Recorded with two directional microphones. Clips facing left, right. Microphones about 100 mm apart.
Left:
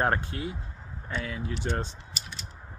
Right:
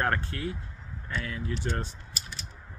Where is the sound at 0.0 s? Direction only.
15° left (ahead or behind).